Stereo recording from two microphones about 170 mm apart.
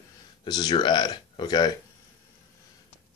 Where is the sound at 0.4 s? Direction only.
25° left (ahead or behind).